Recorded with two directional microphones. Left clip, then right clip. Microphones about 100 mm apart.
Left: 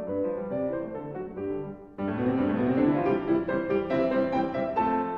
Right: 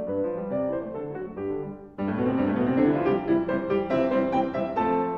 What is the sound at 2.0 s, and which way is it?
Music, 20° right (ahead or behind).